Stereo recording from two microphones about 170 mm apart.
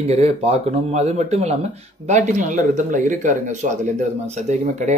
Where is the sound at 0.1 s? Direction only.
35° right (ahead or behind).